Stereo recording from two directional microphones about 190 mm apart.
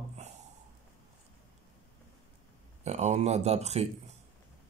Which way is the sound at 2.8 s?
35° right (ahead or behind).